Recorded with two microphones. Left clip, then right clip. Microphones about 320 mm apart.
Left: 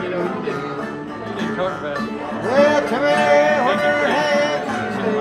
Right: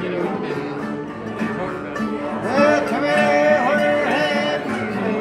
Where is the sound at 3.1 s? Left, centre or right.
Centre.